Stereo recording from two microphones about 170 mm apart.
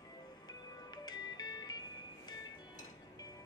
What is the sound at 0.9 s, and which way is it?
Music, 25° left (ahead or behind).